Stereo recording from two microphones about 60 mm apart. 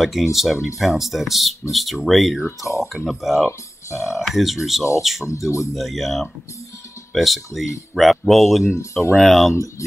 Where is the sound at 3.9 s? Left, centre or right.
Left.